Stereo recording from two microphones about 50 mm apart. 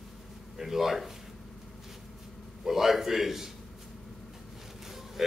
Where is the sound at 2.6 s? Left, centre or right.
Centre.